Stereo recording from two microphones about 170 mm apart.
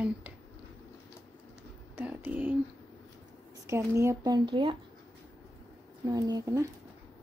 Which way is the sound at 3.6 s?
15° right (ahead or behind).